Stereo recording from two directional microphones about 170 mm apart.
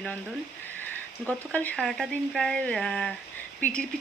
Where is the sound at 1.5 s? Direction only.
10° left (ahead or behind).